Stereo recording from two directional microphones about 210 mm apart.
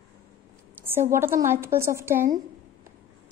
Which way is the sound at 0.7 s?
10° right (ahead or behind).